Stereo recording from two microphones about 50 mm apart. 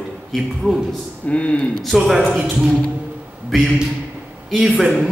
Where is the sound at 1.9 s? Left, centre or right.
Centre.